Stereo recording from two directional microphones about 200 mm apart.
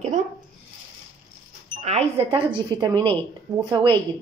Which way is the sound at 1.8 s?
35° right (ahead or behind).